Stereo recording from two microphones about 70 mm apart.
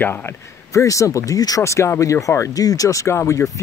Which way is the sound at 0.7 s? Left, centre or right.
Left.